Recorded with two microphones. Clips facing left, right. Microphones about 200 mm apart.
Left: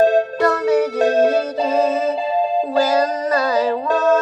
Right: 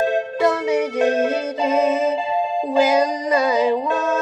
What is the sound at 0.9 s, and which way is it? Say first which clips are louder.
Music: left 3 dB; 35° left (ahead or behind).